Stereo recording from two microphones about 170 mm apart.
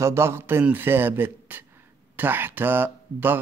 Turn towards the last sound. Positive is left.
turn(degrees=-10)  # may be behind; listen again after turning